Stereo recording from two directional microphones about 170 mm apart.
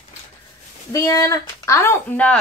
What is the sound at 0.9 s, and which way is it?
Speech, 20° left (ahead or behind).